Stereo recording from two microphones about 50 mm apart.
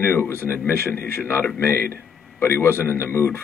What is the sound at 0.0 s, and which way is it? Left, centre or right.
Speech, left.